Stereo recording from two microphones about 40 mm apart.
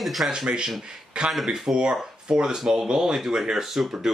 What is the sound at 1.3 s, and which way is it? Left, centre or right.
Speech, centre.